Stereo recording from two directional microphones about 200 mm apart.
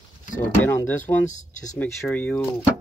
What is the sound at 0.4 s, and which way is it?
Speech, 10° left (ahead or behind).